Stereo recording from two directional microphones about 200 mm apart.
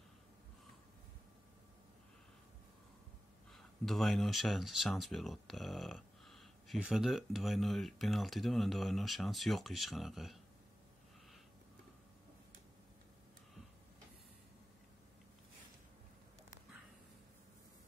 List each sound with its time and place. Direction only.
3.5 s speech: centre (ahead or behind)